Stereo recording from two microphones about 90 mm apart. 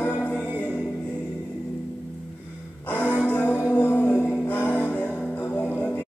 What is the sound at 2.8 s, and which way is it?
Music, 20° left (ahead or behind).